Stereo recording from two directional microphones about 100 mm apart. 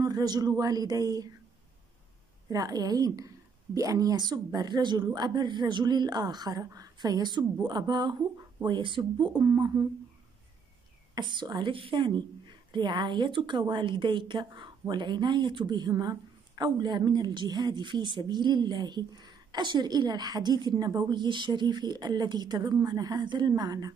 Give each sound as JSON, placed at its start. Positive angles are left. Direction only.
{"t": 0.0, "sound": "speech", "side_deg": -40}
{"t": 2.5, "sound": "a woman's voice", "side_deg": -35}
{"t": 11.1, "sound": "a woman's voice", "side_deg": -50}